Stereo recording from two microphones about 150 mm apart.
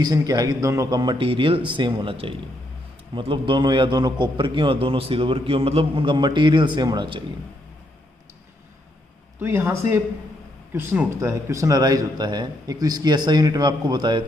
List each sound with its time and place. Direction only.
0.0 s a man's voice: 25° right (ahead or behind)
9.4 s speech: 15° right (ahead or behind)